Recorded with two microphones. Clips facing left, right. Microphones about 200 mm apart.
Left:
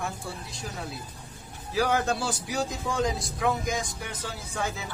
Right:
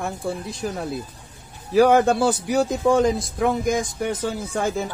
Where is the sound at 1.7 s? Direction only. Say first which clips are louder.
Right 10 dB; 55° right (ahead or behind).